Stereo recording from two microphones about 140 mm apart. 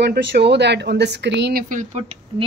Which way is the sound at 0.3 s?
90° right.